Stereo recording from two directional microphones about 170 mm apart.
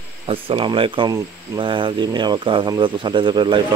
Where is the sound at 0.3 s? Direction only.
30° right (ahead or behind).